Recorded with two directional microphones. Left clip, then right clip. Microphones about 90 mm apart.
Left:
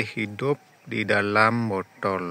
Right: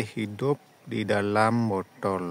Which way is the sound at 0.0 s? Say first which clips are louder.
Left 3 dB; 25° right (ahead or behind).